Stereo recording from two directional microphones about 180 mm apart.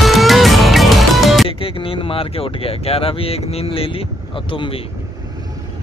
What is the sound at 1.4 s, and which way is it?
Speech, 30° left (ahead or behind).